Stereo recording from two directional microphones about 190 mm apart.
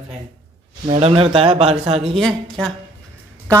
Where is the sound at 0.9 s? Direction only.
30° right (ahead or behind).